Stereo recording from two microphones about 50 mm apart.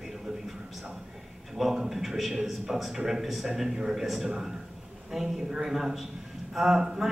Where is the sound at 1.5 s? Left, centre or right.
Centre.